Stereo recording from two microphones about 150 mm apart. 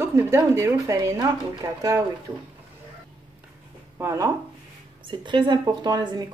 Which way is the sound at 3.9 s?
20° right (ahead or behind).